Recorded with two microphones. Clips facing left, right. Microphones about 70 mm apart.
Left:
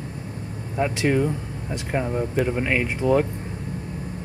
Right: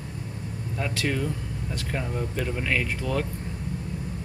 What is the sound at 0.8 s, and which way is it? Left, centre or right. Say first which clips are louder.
Speech: left 7 dB; left.